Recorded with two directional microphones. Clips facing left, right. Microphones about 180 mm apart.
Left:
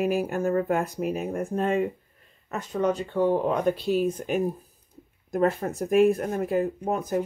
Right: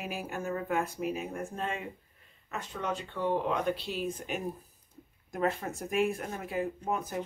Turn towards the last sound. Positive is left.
turn(degrees=40)  # may be behind; listen again after turning